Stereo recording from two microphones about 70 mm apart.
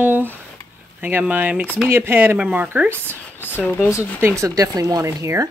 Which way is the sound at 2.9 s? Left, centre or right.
Left.